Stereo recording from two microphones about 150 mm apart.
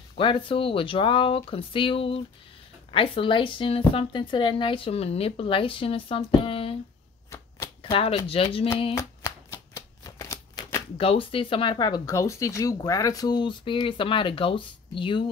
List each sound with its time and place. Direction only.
0.2 s speech: 35° left (ahead or behind)
7.2 s shuffling cards: 20° left (ahead or behind)
7.8 s speech: 40° left (ahead or behind)
8.9 s shuffling cards: 20° left (ahead or behind)
11.0 s speech: 35° left (ahead or behind)